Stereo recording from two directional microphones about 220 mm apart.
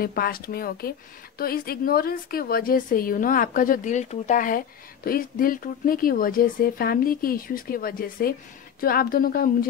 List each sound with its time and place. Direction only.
0.0 s speech: 40° left (ahead or behind)